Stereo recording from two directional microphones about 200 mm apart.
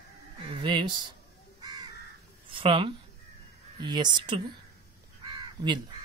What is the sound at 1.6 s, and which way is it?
Crow, 20° right (ahead or behind).